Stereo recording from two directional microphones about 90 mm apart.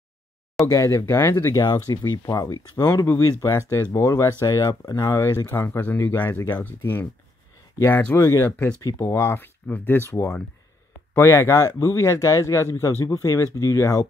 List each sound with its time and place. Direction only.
0.7 s speech: 35° left (ahead or behind)
2.3 s speech: 50° left (ahead or behind)
3.6 s speech: 25° left (ahead or behind)
4.0 s speech: 40° left (ahead or behind)
5.1 s speech: 30° left (ahead or behind)
8.2 s speech: 35° left (ahead or behind)